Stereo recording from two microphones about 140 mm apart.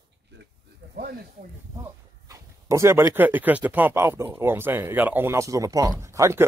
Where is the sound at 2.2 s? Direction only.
20° right (ahead or behind).